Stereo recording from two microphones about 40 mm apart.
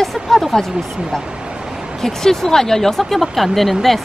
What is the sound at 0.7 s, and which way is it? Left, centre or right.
Speech, centre.